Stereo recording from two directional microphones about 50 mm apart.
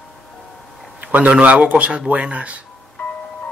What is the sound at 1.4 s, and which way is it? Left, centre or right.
Speech, right.